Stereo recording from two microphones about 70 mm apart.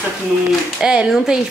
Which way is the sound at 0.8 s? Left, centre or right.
Centre.